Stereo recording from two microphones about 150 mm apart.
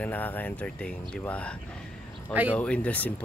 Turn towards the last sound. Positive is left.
turn(degrees=10)  # may be behind; listen again after turning